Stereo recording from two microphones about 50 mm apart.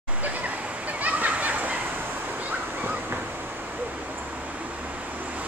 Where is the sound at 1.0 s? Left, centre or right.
Right.